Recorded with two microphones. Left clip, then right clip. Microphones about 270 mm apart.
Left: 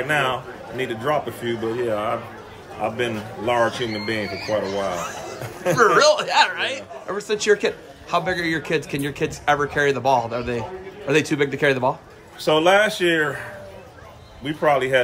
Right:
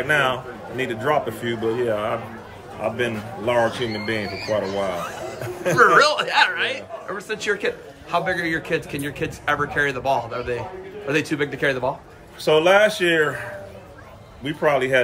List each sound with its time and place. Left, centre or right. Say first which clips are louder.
0.0 s speech: right 1 dB; centre
4.4 s speech: right 1 dB; centre
5.4 s speech: left 1 dB; centre
5.9 s speech: even; centre
12.4 s speech: right 1 dB; centre